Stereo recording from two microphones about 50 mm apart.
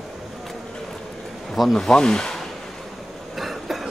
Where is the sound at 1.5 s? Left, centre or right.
Centre.